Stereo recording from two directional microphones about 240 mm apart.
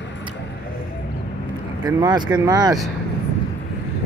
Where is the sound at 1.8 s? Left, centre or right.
Centre.